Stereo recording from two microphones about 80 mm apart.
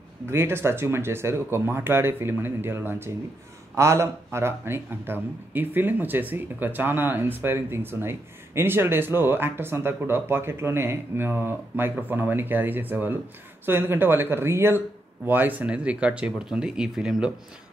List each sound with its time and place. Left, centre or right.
0.3 s speech: right; by 17.3 s centre